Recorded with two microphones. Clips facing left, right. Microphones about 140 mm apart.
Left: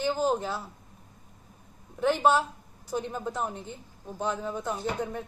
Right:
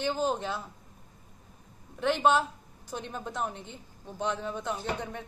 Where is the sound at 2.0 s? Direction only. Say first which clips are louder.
Left 1 dB; 10° left (ahead or behind).